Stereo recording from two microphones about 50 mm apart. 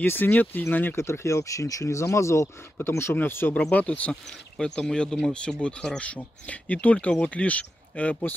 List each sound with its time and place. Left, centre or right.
0.0 s speech: left
0.9 s speech: left
2.4 s speech: left
3.7 s speech: left
4.1 s speech: centre